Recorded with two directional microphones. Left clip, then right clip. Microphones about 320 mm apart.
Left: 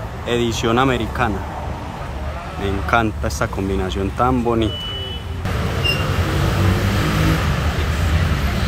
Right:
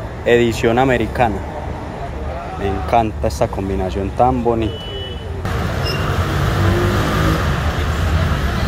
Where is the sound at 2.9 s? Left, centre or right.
Centre.